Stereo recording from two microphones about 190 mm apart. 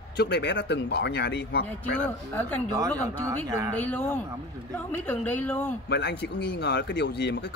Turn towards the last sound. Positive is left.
turn(degrees=65)  # may be behind; listen again after turning